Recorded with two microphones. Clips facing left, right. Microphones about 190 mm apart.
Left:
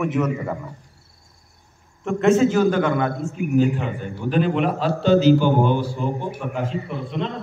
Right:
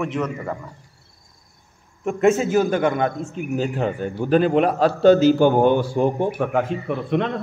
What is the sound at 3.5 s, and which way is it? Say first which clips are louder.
A man's voice: left 3 dB; 35° right (ahead or behind).